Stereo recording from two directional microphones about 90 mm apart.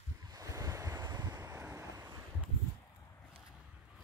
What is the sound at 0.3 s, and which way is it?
Waves, 40° right (ahead or behind).